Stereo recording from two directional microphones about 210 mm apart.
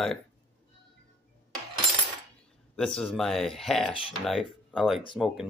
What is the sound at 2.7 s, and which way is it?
Speech, 5° left (ahead or behind).